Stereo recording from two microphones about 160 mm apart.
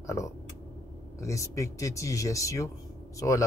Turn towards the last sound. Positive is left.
turn(degrees=20)  # may be behind; listen again after turning